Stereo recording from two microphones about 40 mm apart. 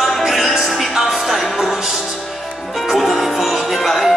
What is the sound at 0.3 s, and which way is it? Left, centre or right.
Music, centre.